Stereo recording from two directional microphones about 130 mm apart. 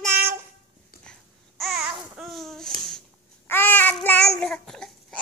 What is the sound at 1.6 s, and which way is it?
Babbling, centre (ahead or behind).